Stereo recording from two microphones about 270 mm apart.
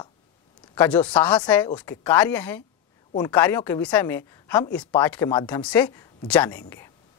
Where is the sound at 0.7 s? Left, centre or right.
Centre.